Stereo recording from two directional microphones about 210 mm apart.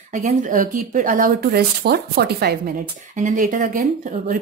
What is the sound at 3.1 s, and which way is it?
Speech, 40° right (ahead or behind).